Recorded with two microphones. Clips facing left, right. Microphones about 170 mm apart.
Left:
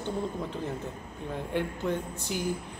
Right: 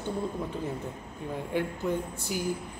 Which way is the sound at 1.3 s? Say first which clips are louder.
Right 1 dB; 10° right (ahead or behind).